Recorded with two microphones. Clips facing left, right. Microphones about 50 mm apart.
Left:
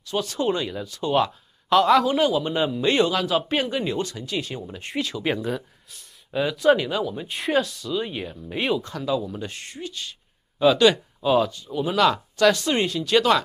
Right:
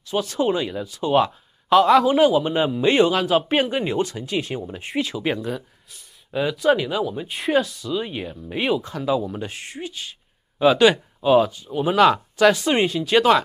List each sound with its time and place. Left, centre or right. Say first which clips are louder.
0.0 s speech: right 3 dB; centre
4.6 s speech: right 3 dB; centre